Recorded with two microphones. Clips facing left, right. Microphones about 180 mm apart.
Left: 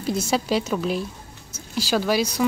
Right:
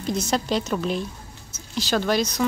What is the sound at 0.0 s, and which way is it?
A woman's voice, 5° left (ahead or behind).